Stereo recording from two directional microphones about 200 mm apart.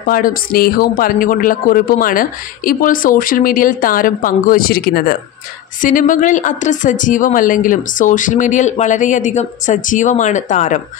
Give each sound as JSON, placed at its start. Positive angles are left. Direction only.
{"t": 0.0, "sound": "speech", "side_deg": 45}